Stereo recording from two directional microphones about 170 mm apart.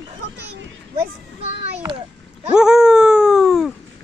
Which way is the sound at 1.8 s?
30° right (ahead or behind).